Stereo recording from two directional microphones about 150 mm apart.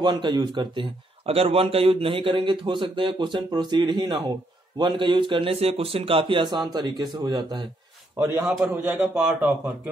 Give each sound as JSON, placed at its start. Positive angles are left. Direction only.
{"t": 0.0, "sound": "speech", "side_deg": -30}
{"t": 8.2, "sound": "a man's voice", "side_deg": -15}